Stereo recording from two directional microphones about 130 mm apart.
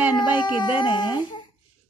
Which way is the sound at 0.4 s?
35° left (ahead or behind).